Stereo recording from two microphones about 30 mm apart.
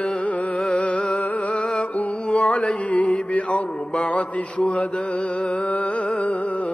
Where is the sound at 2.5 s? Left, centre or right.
Left.